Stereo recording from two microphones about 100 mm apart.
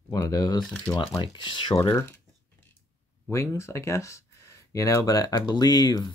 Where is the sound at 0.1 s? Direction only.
40° left (ahead or behind).